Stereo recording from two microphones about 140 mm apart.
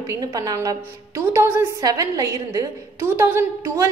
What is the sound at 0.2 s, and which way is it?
A woman's voice, 25° right (ahead or behind).